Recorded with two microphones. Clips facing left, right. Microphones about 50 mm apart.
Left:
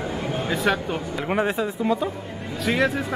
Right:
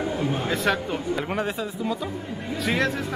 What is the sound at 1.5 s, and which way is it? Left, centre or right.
Speech, left.